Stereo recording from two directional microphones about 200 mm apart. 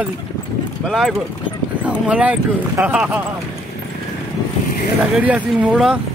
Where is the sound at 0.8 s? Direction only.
Centre (ahead or behind).